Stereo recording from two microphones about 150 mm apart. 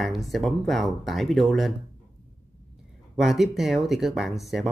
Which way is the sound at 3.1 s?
Centre (ahead or behind).